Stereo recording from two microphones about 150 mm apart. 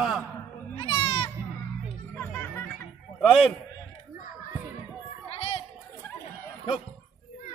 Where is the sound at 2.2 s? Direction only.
15° left (ahead or behind).